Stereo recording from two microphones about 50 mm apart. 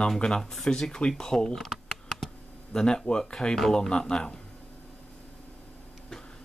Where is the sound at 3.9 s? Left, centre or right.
Centre.